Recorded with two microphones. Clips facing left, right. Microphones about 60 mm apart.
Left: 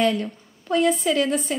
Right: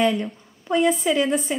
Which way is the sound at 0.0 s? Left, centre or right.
Centre.